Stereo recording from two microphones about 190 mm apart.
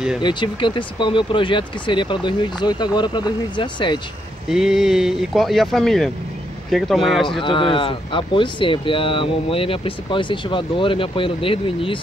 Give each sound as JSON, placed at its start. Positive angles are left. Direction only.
{"t": 0.2, "sound": "speech", "side_deg": 25}
{"t": 4.5, "sound": "speech", "side_deg": 0}
{"t": 7.4, "sound": "speech", "side_deg": 25}